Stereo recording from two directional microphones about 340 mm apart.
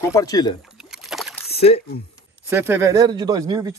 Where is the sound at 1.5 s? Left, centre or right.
Centre.